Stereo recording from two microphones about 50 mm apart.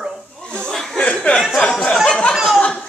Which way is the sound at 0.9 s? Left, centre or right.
Left.